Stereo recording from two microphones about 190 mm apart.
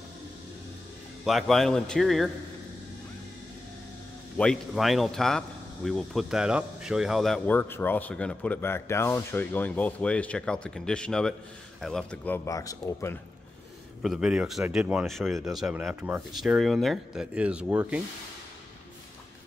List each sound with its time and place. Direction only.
1.2 s speech: centre (ahead or behind)
4.4 s speech: centre (ahead or behind)
12.4 s speech: 20° left (ahead or behind)
14.0 s speech: 5° right (ahead or behind)